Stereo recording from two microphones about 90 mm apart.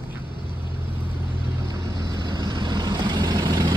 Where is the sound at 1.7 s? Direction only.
35° right (ahead or behind).